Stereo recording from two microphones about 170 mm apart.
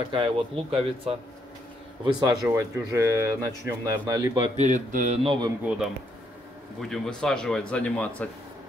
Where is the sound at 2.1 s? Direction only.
25° right (ahead or behind).